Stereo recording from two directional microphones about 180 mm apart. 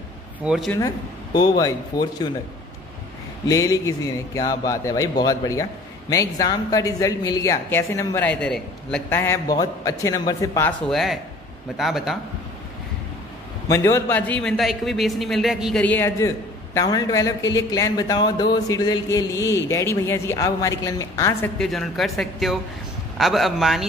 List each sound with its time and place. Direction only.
0.5 s a man's voice: centre (ahead or behind)
0.7 s a man's voice: 25° left (ahead or behind)
3.4 s a man's voice: 20° left (ahead or behind)
10.9 s a man's voice: centre (ahead or behind)
13.7 s a man's voice: 15° left (ahead or behind); by 15.8 s centre (ahead or behind)
15.8 s a man's voice: 10° left (ahead or behind)
21.5 s a man's voice: centre (ahead or behind)